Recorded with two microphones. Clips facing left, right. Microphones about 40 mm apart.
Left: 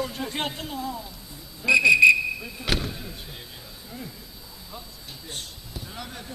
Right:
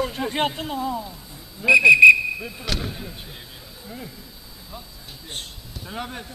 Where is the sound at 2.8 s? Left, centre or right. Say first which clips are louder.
Right 1 dB; centre.